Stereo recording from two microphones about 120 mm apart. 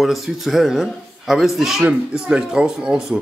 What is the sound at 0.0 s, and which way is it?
Speech, centre (ahead or behind).